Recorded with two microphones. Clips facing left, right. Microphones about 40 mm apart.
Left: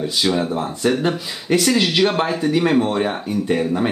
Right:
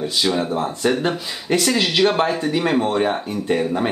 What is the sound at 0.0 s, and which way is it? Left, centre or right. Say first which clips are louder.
Speech: left 1 dB; centre.